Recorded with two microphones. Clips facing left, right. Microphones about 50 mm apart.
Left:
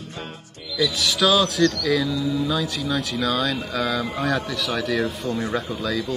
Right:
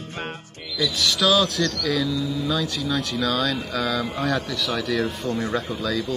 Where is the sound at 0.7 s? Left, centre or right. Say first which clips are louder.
Left 1 dB; centre.